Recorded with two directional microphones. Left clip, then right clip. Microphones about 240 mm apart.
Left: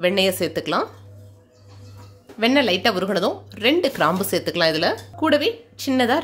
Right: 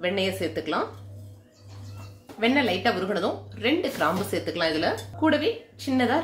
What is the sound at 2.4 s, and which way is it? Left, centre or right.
Speech, left.